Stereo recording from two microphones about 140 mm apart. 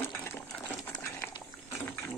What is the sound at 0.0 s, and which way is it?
Coin, 15° left (ahead or behind).